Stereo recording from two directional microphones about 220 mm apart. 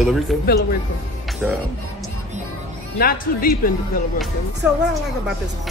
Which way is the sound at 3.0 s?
40° left (ahead or behind).